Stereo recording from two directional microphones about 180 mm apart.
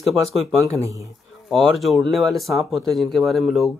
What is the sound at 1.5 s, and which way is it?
Speech, centre (ahead or behind).